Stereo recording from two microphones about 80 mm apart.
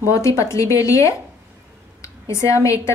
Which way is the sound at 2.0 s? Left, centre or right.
Left.